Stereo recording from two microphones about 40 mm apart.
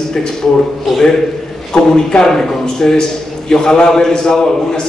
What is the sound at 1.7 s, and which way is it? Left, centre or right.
A man's voice, centre.